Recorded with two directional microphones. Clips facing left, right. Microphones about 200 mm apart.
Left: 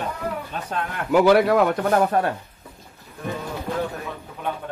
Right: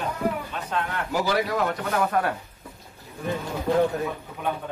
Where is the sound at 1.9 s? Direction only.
35° left (ahead or behind).